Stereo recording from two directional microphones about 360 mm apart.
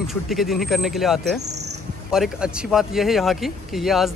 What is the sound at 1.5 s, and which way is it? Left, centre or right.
Insect, right.